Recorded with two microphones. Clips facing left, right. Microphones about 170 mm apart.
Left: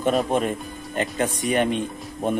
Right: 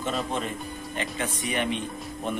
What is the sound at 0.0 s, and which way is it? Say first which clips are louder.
Speech: left 8 dB; 55° left (ahead or behind).